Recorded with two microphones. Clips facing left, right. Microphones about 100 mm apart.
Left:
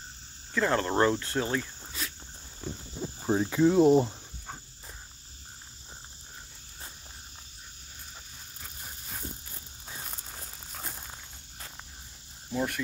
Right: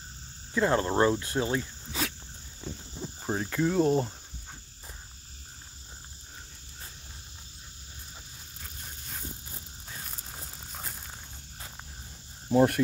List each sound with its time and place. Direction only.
0.5 s speech: 25° right (ahead or behind)
1.9 s dog: 90° right
3.2 s cricket: 5° left (ahead or behind)
8.5 s a sound: 5° left (ahead or behind)
10.3 s crumpling: 10° right (ahead or behind)
10.8 s a sound: 5° left (ahead or behind)
12.4 s speech: 50° right (ahead or behind)